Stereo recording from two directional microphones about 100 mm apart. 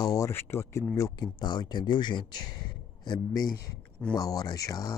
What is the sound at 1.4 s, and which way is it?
Speech, 45° left (ahead or behind).